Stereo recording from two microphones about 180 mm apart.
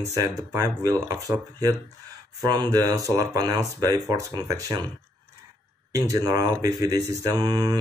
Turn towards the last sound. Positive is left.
turn(degrees=-20)  # may be behind; listen again after turning